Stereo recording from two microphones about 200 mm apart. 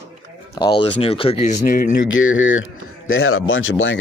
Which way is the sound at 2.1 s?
75° left (ahead or behind).